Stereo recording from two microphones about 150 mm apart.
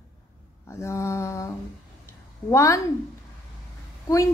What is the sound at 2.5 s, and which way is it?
Mantra, 20° left (ahead or behind).